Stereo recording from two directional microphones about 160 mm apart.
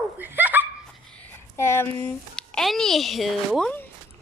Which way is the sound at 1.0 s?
10° left (ahead or behind).